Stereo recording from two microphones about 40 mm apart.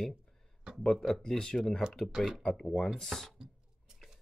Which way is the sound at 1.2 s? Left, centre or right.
Centre.